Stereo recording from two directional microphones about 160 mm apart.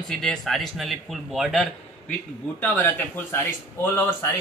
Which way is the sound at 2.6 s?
10° left (ahead or behind).